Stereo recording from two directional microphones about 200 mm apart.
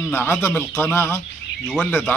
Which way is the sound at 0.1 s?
10° left (ahead or behind).